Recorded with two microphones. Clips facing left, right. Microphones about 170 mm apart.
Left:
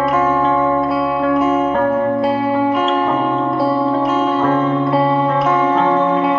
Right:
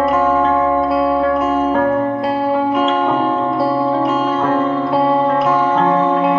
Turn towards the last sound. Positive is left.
turn(degrees=0)  # may be behind; listen again after turning